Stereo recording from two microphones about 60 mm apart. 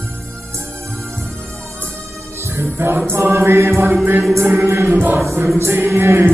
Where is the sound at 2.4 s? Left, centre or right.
Right.